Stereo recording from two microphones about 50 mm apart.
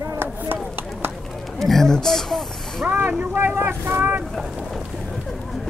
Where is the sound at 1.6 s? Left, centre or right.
Centre.